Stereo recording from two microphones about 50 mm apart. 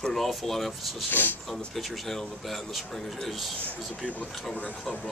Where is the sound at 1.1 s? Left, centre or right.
Left.